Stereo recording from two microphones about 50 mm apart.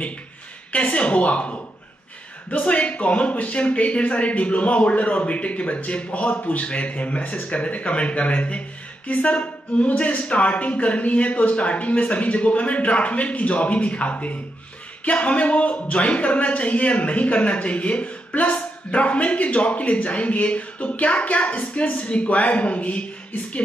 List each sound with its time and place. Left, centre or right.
0.7 s a man's voice: left